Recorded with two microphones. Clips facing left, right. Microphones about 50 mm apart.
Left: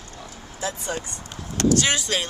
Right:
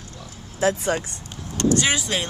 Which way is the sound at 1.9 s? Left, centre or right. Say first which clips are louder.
Even; centre.